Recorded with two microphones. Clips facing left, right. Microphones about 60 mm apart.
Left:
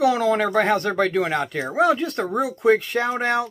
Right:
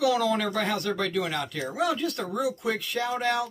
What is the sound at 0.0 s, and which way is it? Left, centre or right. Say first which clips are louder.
Speech: left 5 dB; left.